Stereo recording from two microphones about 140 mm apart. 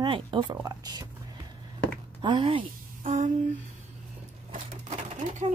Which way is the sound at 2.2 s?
35° right (ahead or behind).